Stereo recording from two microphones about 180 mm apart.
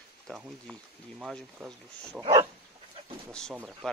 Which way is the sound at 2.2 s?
30° right (ahead or behind).